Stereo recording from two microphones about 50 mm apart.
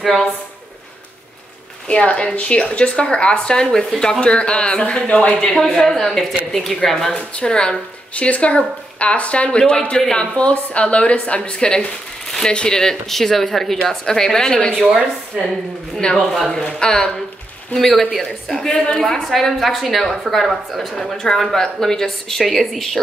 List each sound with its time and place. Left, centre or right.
1.9 s a woman's voice: left
7.3 s a woman's voice: centre
14.8 s speech: centre
16.0 s a woman's voice: centre
17.7 s a woman's voice: centre